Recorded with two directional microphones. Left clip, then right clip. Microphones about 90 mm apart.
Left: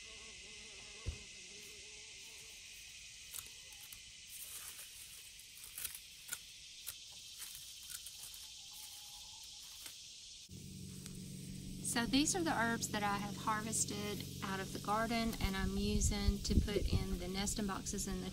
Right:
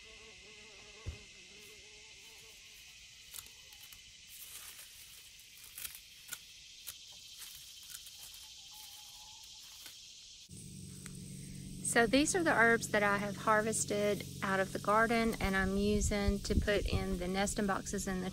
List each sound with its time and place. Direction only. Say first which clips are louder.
11.9 s a woman's voice: right 7 dB; 35° left (ahead or behind)